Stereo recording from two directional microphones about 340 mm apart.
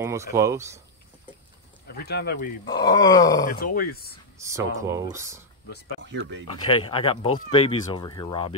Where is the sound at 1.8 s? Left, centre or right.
Left.